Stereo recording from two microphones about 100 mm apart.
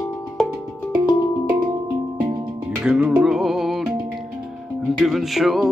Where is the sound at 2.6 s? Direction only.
10° right (ahead or behind).